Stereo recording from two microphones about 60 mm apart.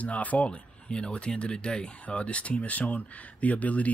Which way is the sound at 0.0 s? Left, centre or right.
Left.